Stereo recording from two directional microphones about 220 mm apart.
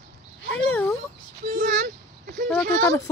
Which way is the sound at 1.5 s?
40° right (ahead or behind).